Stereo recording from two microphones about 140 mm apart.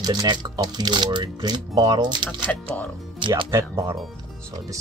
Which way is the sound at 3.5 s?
20° right (ahead or behind).